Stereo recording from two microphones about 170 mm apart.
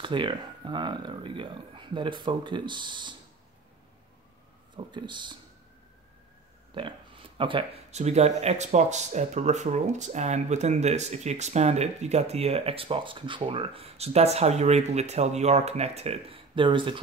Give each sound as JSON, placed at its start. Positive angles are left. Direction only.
{"t": 0.0, "sound": "speech", "side_deg": -30}
{"t": 4.7, "sound": "speech", "side_deg": -25}
{"t": 6.7, "sound": "speech", "side_deg": -30}